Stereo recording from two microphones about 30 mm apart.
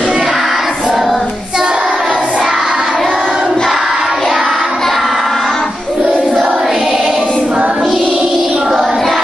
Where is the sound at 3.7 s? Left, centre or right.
Centre.